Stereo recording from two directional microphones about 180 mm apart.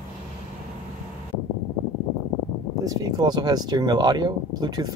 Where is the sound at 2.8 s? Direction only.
20° right (ahead or behind).